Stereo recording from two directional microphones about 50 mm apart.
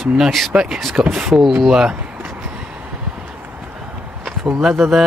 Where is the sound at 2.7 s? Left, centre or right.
Right.